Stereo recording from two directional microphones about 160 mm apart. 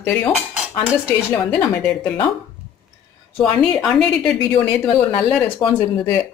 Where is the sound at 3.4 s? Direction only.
Centre (ahead or behind).